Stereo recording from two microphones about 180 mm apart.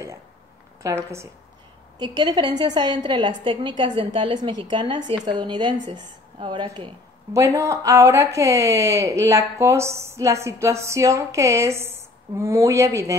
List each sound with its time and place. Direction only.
0.8 s a woman's voice: 15° right (ahead or behind)
7.3 s speech: 15° right (ahead or behind)